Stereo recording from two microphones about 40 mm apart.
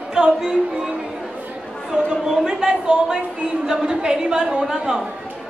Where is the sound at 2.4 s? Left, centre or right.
Centre.